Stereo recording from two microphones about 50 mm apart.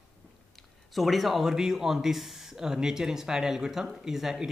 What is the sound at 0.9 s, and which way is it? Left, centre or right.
Speech, centre.